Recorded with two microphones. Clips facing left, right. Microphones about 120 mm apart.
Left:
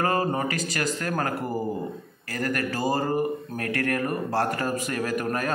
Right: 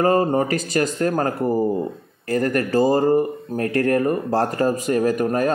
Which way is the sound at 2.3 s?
30° right (ahead or behind).